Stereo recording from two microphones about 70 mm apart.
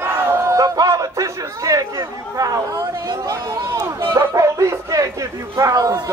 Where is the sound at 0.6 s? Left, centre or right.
Right.